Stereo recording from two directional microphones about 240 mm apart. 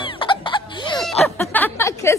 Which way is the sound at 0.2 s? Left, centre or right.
Centre.